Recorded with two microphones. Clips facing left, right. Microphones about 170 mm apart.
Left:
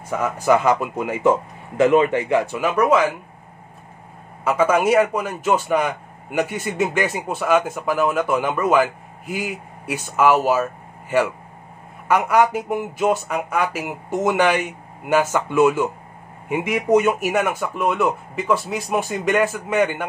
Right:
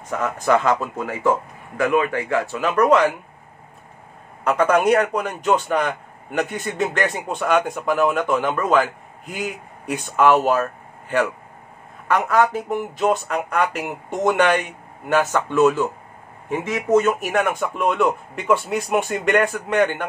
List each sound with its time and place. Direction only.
0.1 s a man's voice: 10° left (ahead or behind)
4.5 s a man's voice: 5° left (ahead or behind)